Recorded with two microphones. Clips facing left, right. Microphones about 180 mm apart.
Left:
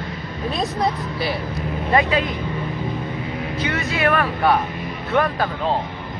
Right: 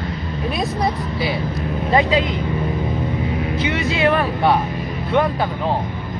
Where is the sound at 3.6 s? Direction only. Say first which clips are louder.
Right 2 dB; 20° right (ahead or behind).